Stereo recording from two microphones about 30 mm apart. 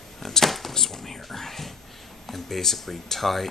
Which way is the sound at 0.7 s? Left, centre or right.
Centre.